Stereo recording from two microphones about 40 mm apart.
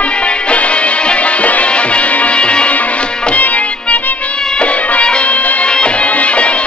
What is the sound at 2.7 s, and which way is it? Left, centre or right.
Music, left.